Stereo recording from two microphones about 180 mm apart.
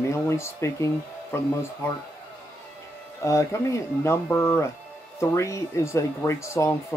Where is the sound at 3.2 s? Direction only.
15° left (ahead or behind).